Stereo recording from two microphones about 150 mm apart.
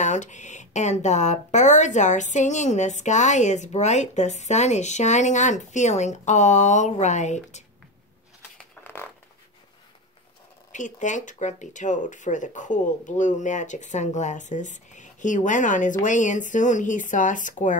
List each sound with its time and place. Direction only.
0.0 s speech: 55° left (ahead or behind)
8.5 s a sound: 15° left (ahead or behind)
10.7 s speech: 55° left (ahead or behind)